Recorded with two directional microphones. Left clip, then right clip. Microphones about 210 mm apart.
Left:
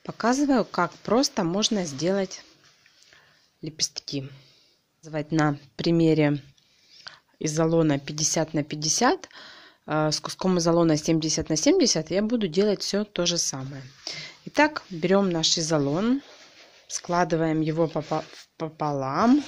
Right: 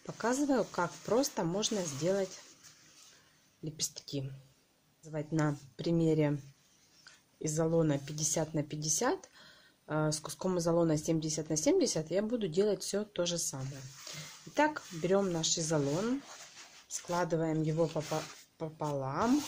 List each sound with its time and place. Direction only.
0.0 s speech: 25° left (ahead or behind)
3.6 s speech: 25° left (ahead or behind)